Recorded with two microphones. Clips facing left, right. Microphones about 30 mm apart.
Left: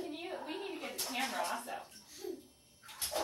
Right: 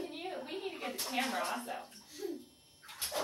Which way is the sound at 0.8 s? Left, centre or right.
Centre.